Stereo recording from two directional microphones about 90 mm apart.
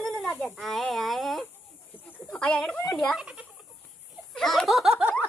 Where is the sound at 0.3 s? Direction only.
25° left (ahead or behind).